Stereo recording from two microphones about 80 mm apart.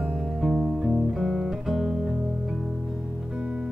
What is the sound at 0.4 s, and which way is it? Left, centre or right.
Music, centre.